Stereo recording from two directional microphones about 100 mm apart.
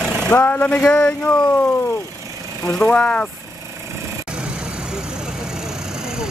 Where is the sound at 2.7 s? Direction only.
10° left (ahead or behind).